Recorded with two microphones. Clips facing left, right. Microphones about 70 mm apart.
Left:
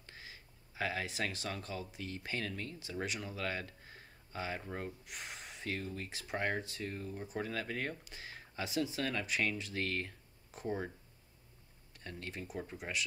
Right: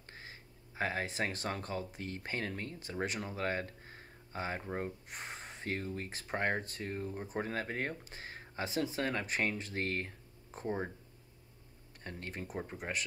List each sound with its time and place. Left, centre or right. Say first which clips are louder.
0.0 s speech: right 2 dB; right
12.0 s speech: right 1 dB; right